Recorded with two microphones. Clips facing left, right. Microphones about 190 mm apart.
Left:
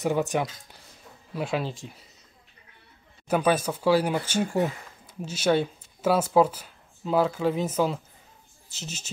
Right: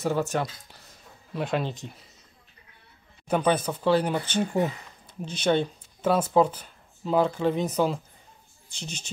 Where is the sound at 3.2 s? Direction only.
5° left (ahead or behind).